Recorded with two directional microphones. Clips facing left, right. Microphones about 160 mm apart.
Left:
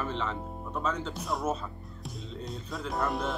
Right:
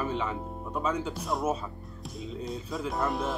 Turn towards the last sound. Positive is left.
turn(degrees=0)  # may be behind; listen again after turning